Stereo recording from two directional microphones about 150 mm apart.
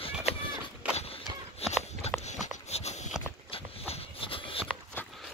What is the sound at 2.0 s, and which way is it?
Walk, 45° left (ahead or behind).